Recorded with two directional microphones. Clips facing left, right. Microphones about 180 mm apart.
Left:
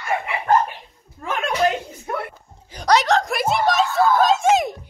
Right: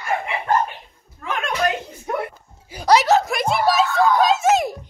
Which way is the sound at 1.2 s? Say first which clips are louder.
Left 1 dB; 30° left (ahead or behind).